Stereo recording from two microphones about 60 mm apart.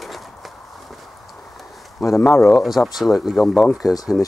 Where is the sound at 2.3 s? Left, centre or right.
Left.